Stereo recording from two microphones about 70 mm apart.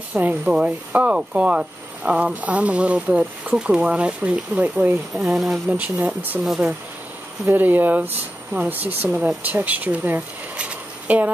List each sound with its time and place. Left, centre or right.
0.1 s speech: right
5.1 s speech: centre
5.7 s speech: right
6.4 s speech: centre
7.4 s speech: right